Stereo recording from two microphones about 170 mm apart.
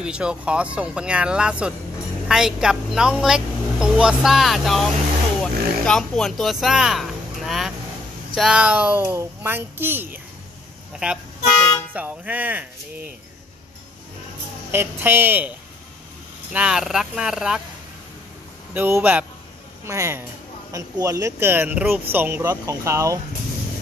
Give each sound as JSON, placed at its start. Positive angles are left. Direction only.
{"t": 0.0, "sound": "speech", "side_deg": -5}
{"t": 14.7, "sound": "speech", "side_deg": -15}
{"t": 16.5, "sound": "speech", "side_deg": -5}
{"t": 18.7, "sound": "speech", "side_deg": -10}